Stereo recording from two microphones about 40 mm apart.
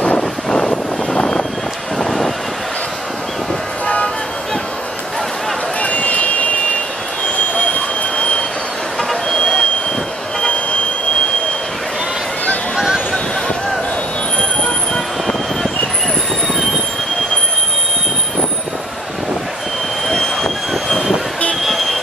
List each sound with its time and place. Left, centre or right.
0.2 s vehicle: centre
2.0 s vehicle: centre
3.8 s vehicle: left
5.8 s vehicle: left
9.3 s vehicle: centre
12.7 s a sound: centre
20.1 s train: centre